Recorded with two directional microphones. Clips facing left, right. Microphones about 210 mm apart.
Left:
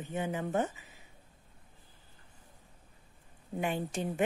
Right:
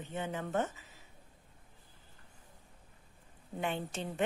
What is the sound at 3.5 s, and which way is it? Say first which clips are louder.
Speech: left 3 dB; 10° left (ahead or behind).